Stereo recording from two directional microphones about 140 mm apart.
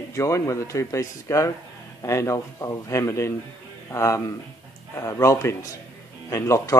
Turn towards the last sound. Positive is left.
turn(degrees=20)  # may be behind; listen again after turning